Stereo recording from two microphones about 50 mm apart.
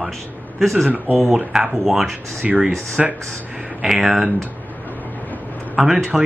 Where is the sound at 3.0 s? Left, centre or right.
Centre.